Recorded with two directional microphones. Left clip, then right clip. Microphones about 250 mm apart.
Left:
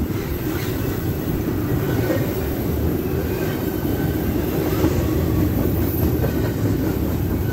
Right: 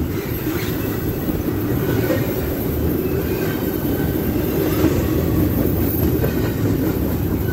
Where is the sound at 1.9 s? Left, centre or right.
Right.